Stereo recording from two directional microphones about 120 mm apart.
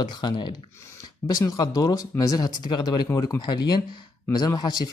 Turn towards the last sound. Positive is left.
turn(degrees=35)  # may be behind; listen again after turning